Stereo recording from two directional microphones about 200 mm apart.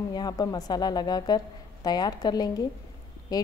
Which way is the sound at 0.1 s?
20° left (ahead or behind).